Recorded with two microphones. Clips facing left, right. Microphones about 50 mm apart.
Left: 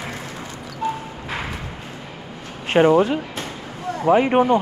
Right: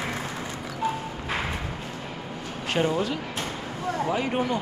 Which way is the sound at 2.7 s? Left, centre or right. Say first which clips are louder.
Left 10 dB; left.